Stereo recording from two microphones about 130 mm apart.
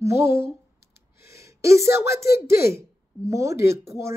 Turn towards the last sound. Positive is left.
turn(degrees=-20)  # may be behind; listen again after turning